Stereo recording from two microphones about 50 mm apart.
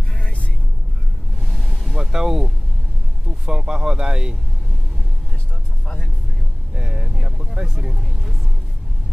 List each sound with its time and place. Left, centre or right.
0.2 s vehicle: left
1.9 s a sound: centre
3.4 s speech: centre
6.7 s vehicle: centre